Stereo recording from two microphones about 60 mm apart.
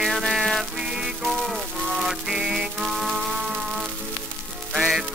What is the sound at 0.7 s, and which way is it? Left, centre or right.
Music, centre.